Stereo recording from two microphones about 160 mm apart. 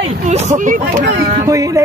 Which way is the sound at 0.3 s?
50° right (ahead or behind).